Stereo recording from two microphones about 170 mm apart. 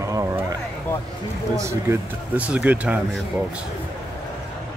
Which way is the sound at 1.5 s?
15° right (ahead or behind).